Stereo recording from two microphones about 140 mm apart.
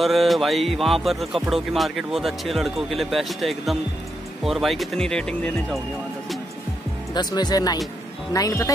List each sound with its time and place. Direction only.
0.0 s speech: centre (ahead or behind)
7.2 s speech: 30° left (ahead or behind)